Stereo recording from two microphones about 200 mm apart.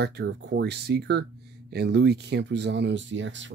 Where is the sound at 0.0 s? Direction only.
60° right (ahead or behind).